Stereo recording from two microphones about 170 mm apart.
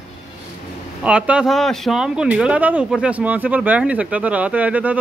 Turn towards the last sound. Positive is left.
turn(degrees=-10)  # may be behind; listen again after turning